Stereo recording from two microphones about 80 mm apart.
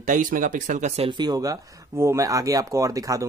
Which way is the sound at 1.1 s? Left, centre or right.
Right.